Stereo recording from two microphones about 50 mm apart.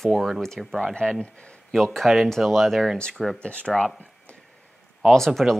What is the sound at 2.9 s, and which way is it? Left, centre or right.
Speech, centre.